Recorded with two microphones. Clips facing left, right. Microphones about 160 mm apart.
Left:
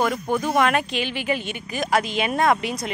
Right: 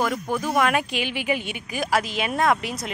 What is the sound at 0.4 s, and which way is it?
Speech, 5° right (ahead or behind).